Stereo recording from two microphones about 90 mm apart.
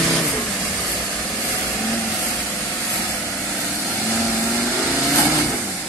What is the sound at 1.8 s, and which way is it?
Vehicle, 10° left (ahead or behind).